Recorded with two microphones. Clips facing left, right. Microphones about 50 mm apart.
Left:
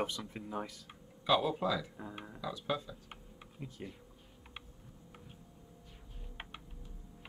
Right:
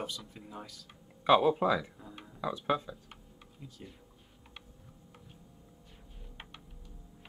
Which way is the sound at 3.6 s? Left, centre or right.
Left.